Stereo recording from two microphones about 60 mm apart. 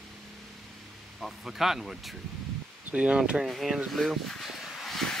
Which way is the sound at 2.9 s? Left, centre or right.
Centre.